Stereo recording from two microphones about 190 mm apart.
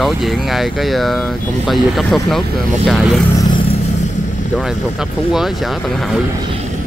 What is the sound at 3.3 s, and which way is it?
Vehicle, 20° left (ahead or behind).